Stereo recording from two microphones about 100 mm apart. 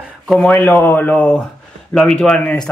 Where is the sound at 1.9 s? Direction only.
5° left (ahead or behind).